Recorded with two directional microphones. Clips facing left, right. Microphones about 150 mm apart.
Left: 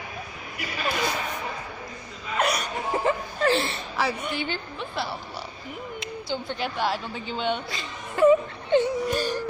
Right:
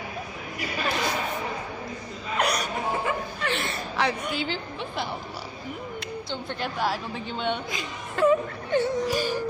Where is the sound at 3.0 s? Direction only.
35° left (ahead or behind).